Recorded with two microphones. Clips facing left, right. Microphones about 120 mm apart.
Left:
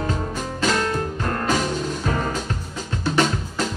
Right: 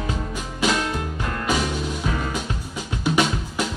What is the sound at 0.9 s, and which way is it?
Music, 40° left (ahead or behind).